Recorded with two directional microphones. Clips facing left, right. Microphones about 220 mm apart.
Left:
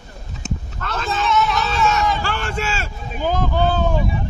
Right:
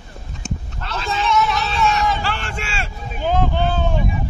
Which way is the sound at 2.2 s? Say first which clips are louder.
Left 3 dB; 45° left (ahead or behind).